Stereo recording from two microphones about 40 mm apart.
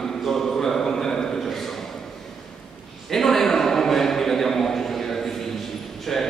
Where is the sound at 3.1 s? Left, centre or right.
Centre.